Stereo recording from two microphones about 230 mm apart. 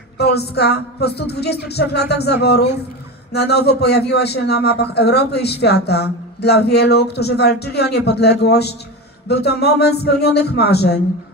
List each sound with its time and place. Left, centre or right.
0.2 s a man's voice: left